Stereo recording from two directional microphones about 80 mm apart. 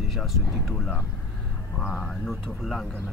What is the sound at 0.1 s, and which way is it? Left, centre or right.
Speech, centre.